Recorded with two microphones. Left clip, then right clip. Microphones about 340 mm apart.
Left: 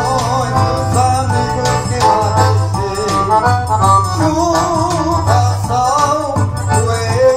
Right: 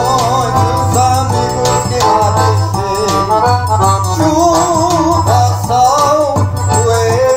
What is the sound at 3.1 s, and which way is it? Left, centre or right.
Music, right.